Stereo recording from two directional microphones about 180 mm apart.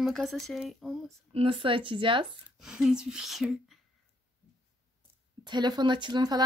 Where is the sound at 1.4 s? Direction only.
30° right (ahead or behind).